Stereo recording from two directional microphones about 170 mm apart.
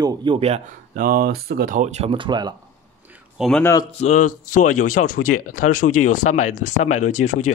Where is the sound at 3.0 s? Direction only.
10° right (ahead or behind).